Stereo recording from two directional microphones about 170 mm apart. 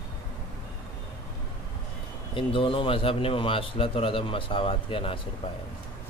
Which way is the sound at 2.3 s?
30° left (ahead or behind).